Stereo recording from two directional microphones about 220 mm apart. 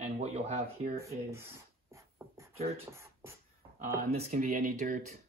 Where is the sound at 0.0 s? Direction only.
30° right (ahead or behind).